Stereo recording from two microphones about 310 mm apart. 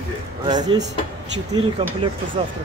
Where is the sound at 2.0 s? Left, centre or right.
Centre.